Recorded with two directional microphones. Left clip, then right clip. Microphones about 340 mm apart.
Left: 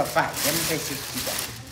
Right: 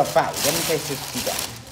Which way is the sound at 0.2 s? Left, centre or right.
Right.